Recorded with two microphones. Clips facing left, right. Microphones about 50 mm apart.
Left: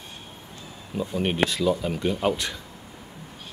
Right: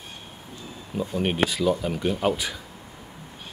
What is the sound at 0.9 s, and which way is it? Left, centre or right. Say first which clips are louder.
Speech: even; centre.